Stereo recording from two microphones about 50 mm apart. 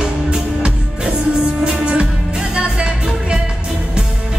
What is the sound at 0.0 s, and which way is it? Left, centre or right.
Music, centre.